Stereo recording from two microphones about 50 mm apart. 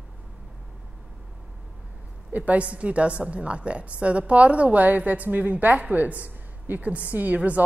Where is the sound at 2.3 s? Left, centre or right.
Right.